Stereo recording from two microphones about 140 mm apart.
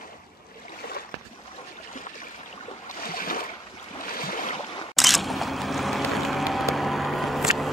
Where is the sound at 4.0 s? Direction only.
90° left.